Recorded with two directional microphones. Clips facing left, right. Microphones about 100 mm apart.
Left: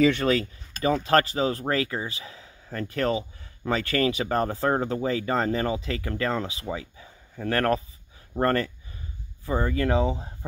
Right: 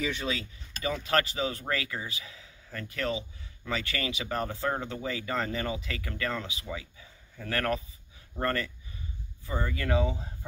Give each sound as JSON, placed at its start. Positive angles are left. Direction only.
{"t": 0.0, "sound": "speech", "side_deg": 65}
{"t": 0.8, "sound": "speech", "side_deg": 35}